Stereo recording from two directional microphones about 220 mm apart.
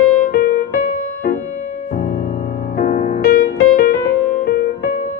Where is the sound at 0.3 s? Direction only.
40° left (ahead or behind).